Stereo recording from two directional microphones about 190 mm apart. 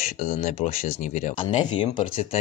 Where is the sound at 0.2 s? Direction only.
35° left (ahead or behind).